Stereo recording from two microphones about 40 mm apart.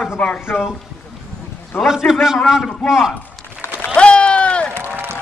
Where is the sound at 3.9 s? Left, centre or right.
Left.